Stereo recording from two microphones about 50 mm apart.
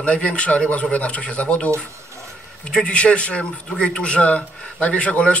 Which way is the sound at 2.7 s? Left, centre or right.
Left.